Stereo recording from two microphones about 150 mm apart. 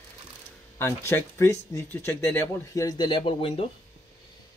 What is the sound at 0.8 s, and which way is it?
Speech, 15° left (ahead or behind).